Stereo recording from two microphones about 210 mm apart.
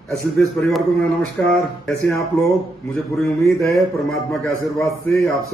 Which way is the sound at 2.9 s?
15° left (ahead or behind).